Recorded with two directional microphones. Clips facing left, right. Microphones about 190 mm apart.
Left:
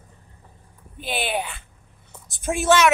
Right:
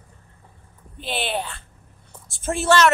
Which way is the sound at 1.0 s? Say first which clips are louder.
Even; 10° left (ahead or behind).